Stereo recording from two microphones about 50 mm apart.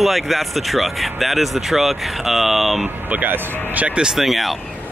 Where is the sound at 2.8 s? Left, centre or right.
Right.